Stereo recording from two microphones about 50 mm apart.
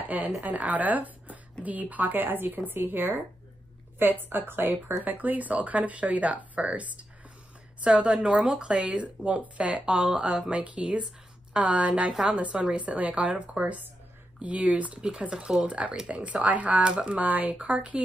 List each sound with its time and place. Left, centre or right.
0.4 s speech: right
4.3 s speech: right
5.1 s speech: right; by 15.6 s centre
15.6 s speech: right
16.8 s speech: centre
17.2 s speech: right
17.6 s speech: right